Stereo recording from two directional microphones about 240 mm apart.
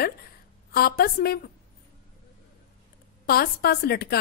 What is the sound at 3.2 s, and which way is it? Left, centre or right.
Speech, left.